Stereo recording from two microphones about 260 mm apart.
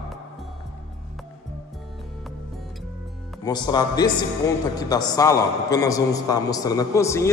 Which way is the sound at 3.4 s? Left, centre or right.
Centre.